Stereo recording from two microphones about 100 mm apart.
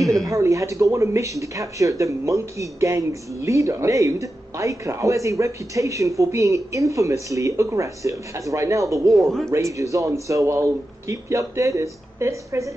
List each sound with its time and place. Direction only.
0.2 s speech: 35° right (ahead or behind)